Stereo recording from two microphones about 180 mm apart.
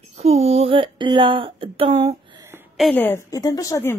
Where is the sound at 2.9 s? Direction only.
10° left (ahead or behind).